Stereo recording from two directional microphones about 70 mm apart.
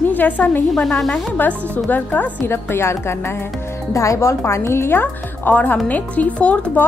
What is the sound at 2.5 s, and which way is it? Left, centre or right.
Speech, left.